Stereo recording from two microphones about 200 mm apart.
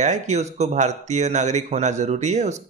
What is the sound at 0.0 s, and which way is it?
Speech, 35° right (ahead or behind).